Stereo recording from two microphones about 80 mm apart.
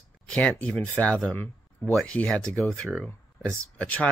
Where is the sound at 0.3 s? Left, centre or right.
Centre.